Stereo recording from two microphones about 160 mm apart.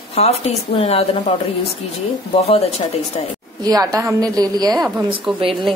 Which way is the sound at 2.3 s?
40° left (ahead or behind).